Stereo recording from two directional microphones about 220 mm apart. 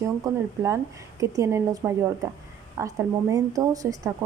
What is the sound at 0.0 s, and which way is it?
Speech, 15° right (ahead or behind).